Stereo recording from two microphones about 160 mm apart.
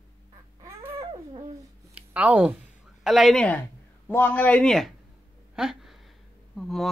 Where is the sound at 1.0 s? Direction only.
30° right (ahead or behind).